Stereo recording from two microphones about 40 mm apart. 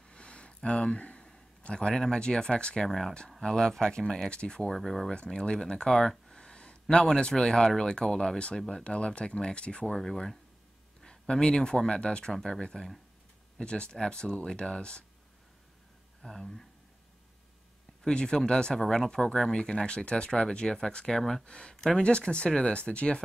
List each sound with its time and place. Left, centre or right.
0.0 s a sound: left
1.6 s speech: left; by 5.1 s centre
5.1 s speech: left
5.9 s speech: centre
6.3 s a sound: left
7.2 s speech: left
8.8 s speech: left
9.9 s speech: centre
16.2 s speech: centre
18.0 s speech: centre
18.8 s speech: centre
21.2 s speech: centre
21.5 s speech: left